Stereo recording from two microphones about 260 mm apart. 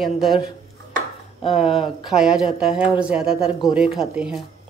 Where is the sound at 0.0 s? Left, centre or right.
Centre.